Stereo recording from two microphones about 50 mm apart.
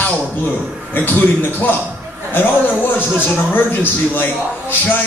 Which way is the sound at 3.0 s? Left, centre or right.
Left.